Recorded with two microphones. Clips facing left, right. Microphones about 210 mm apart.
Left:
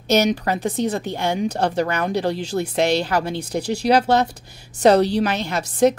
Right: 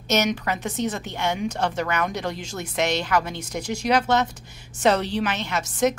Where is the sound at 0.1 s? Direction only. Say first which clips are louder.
Left 5 dB; 35° left (ahead or behind).